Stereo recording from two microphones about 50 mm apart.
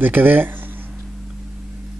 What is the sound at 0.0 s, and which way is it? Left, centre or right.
Speech, right.